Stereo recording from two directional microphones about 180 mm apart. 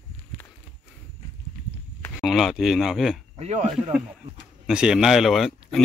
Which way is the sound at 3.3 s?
35° right (ahead or behind).